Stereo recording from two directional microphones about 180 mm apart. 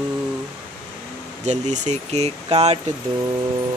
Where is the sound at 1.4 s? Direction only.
40° right (ahead or behind).